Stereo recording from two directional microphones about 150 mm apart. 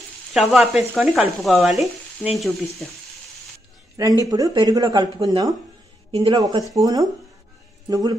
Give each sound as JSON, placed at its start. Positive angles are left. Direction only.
{"t": 0.3, "sound": "speech", "side_deg": 0}
{"t": 4.2, "sound": "speech", "side_deg": -25}
{"t": 6.1, "sound": "speech", "side_deg": -35}
{"t": 6.7, "sound": "speech", "side_deg": -25}